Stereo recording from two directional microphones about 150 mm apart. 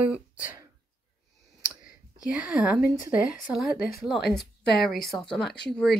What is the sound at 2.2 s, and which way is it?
Speech, 5° right (ahead or behind).